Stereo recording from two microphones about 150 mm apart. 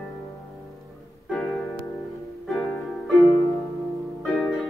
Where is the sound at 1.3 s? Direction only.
5° left (ahead or behind).